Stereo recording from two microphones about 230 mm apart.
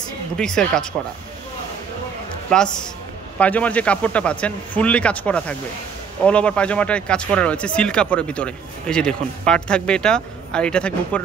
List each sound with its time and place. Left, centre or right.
0.4 s speech: centre
2.5 s speech: centre